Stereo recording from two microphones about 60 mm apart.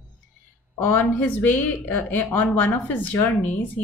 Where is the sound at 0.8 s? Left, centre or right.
Left.